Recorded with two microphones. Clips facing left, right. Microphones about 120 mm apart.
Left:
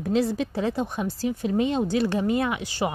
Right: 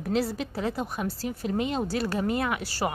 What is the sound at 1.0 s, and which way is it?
Speech, 35° right (ahead or behind).